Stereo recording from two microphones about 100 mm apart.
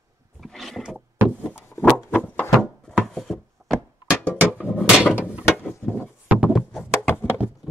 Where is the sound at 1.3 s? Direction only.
15° left (ahead or behind).